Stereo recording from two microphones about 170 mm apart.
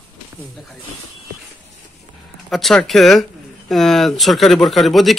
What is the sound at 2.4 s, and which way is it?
Speech, centre (ahead or behind).